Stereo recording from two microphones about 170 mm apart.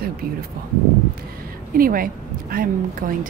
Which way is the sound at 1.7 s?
55° right (ahead or behind).